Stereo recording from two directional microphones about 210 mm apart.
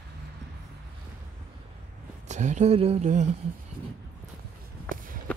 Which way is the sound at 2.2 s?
35° right (ahead or behind).